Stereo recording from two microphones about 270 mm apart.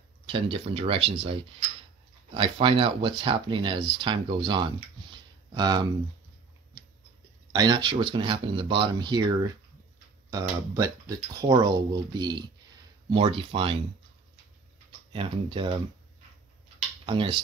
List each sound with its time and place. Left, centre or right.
0.3 s speech: centre
7.5 s speech: centre
15.1 s speech: centre
17.0 s speech: centre